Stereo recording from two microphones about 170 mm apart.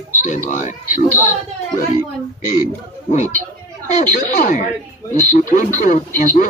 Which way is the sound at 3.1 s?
45° left (ahead or behind).